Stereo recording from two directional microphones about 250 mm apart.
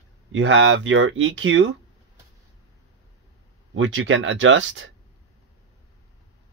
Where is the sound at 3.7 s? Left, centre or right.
Right.